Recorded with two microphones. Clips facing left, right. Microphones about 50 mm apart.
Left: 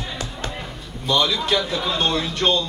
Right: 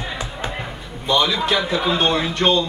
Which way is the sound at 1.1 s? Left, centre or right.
Centre.